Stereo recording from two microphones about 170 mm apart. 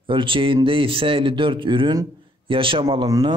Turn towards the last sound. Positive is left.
turn(degrees=-25)  # may be behind; listen again after turning